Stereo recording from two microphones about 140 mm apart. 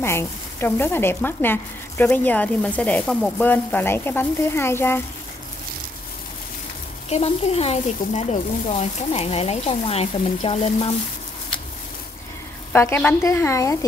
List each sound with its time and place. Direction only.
0.0 s speech: 20° left (ahead or behind)
7.1 s speech: 50° left (ahead or behind)
12.7 s a woman's voice: 15° left (ahead or behind)